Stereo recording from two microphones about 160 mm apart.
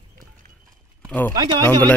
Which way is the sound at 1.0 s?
10° left (ahead or behind).